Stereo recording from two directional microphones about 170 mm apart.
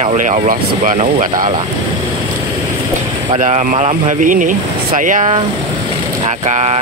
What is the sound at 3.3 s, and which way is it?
Speech, 40° right (ahead or behind).